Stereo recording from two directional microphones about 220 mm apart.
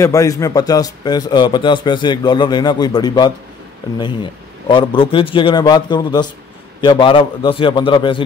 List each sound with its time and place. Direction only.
0.0 s a man's voice: 15° left (ahead or behind)